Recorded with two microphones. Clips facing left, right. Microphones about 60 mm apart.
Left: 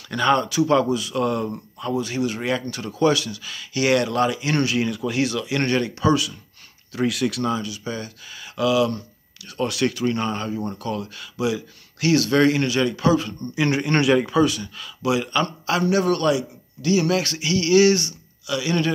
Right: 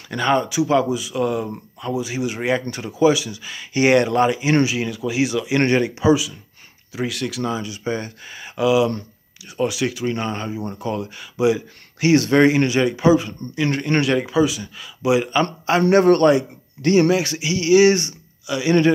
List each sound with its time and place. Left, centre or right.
0.1 s speech: centre
4.7 s speech: centre
7.6 s speech: right
9.6 s speech: centre
13.6 s a man's voice: centre
15.0 s speech: right
15.9 s a man's voice: right
17.1 s speech: centre